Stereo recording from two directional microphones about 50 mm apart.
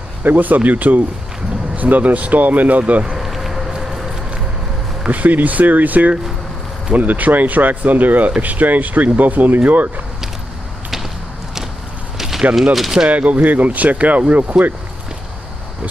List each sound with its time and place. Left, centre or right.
0.2 s speech: right
3.1 s a sound: centre
5.1 s speech: right
12.2 s a sound: centre
12.7 s speech: centre
13.1 s speech: right